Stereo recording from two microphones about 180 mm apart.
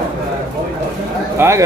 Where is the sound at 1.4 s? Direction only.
15° right (ahead or behind).